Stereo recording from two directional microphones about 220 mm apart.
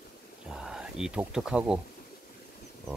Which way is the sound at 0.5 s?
5° right (ahead or behind).